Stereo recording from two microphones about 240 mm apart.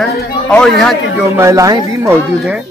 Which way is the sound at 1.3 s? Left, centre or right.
Centre.